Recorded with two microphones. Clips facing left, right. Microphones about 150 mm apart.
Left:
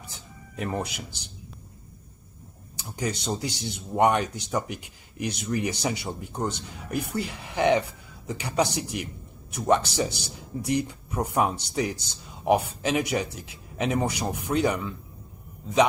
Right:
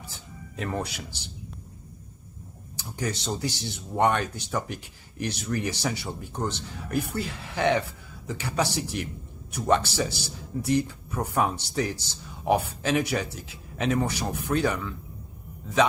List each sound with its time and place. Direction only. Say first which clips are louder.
0.6 s speech: left 1 dB; 15° left (ahead or behind)
3.0 s speech: left 1 dB; 20° left (ahead or behind)